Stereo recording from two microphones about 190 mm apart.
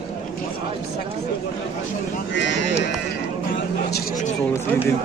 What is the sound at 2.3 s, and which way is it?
Speech, 70° left (ahead or behind).